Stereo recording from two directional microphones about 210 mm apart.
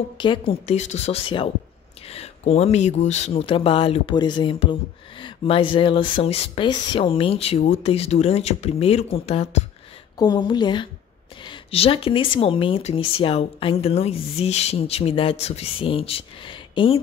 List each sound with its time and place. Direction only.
0.2 s speech: 25° left (ahead or behind)
10.1 s speech: 20° left (ahead or behind)